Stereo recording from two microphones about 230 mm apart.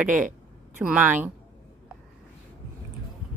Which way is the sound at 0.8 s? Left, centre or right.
Centre.